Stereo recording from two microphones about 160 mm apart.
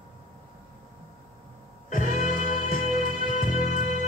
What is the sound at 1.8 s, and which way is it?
Music, 55° left (ahead or behind).